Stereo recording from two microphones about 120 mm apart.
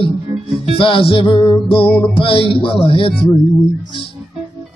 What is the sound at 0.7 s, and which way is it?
Music, 45° left (ahead or behind).